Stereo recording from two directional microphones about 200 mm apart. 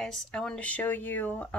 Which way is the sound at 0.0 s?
5° left (ahead or behind).